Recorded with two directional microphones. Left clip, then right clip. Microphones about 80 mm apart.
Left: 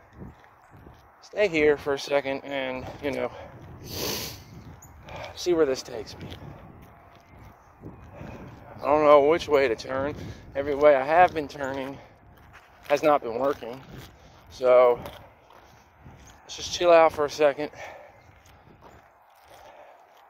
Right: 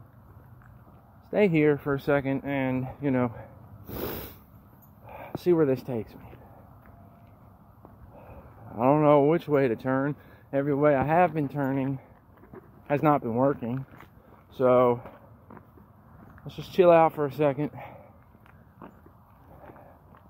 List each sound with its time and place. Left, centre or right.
1.3 s speech: right
2.0 s speech: right
3.9 s snort: right
5.4 s speech: right
8.8 s speech: right
11.2 s speech: right
11.6 s speech: right
13.0 s speech: right
14.6 s speech: right
16.5 s speech: right
16.9 s speech: right